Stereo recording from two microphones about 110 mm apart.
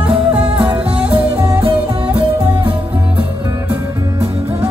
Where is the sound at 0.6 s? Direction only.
15° right (ahead or behind).